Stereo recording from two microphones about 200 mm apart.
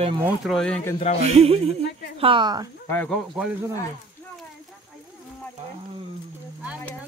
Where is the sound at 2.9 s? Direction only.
10° left (ahead or behind).